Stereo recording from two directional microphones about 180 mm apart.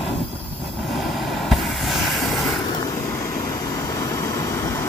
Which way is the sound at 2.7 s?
20° left (ahead or behind).